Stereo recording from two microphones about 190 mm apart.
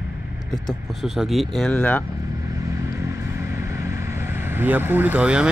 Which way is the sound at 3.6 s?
15° right (ahead or behind).